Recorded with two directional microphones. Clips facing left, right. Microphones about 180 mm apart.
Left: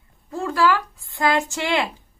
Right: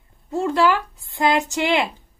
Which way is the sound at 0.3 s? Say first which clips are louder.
Right 2 dB; 25° right (ahead or behind).